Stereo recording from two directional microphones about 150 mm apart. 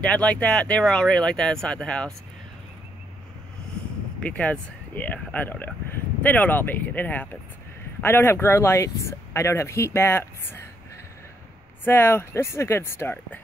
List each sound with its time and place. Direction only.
0.0 s speech: 10° left (ahead or behind)
4.2 s speech: 10° left (ahead or behind)
11.8 s speech: 15° left (ahead or behind)